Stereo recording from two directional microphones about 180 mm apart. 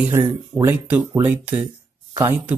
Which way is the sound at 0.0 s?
15° right (ahead or behind).